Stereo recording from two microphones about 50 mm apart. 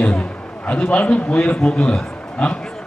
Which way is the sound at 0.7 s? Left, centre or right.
Left.